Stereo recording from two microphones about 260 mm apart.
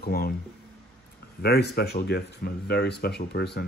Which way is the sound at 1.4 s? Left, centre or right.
Left.